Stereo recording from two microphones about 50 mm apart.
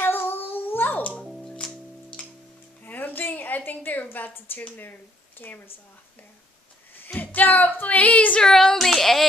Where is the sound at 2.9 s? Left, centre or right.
Left.